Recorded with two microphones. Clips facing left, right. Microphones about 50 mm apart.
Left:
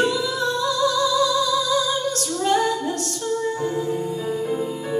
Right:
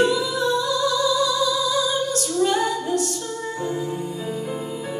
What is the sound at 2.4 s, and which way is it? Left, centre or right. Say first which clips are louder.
Female singing: left 1 dB; centre.